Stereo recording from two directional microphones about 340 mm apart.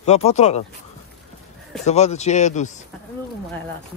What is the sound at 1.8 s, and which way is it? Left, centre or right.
Speech, centre.